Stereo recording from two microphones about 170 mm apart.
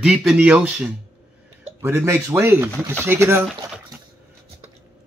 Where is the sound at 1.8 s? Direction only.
15° right (ahead or behind).